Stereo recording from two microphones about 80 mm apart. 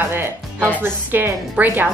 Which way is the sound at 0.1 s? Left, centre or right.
Right.